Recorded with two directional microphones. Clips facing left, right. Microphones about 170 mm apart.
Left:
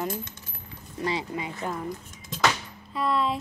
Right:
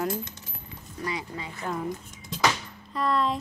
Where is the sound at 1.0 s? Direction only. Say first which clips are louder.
Left 4 dB; 20° left (ahead or behind).